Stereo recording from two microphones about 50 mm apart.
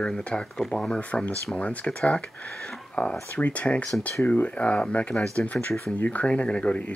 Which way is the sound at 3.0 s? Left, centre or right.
Left.